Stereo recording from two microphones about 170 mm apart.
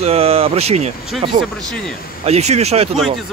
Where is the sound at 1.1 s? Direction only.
Centre (ahead or behind).